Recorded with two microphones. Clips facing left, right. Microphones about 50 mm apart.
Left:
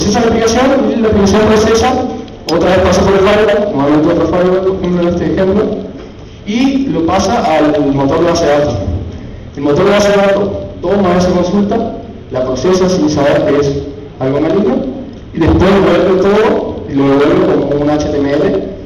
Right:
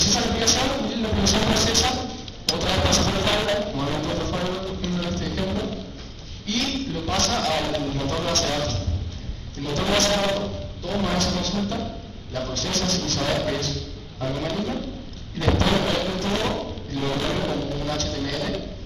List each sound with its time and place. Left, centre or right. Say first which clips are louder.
0.0 s speech: left 14 dB; left
1.2 s speech: left 13 dB; left
2.5 s a man's voice: left 15 dB; left
4.7 s a man's voice: left 16 dB; left
5.4 s speech: left 17 dB; left
6.4 s a man's voice: left 15 dB; left
9.6 s a man's voice: left 15 dB; left
15.6 s a man's voice: left 16 dB; left
17.1 s a man's voice: left 18 dB; left
17.9 s a man's voice: left 16 dB; left